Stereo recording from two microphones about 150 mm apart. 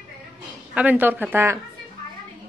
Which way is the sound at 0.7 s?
10° right (ahead or behind).